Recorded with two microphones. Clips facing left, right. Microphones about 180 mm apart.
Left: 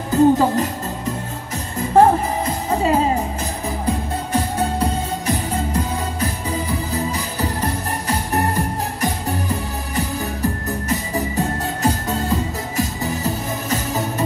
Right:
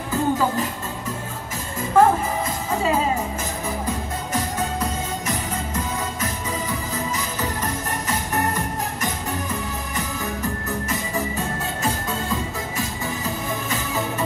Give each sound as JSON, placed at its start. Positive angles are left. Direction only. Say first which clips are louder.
{"t": 0.1, "sound": "speech", "louder": "left 8 dB", "side_deg": 40}
{"t": 1.8, "sound": "music", "louder": "left 3 dB", "side_deg": 35}